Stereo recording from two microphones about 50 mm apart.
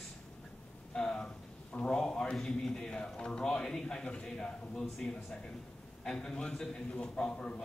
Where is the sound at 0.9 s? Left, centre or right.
Centre.